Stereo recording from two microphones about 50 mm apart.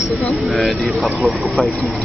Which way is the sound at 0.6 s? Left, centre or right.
Centre.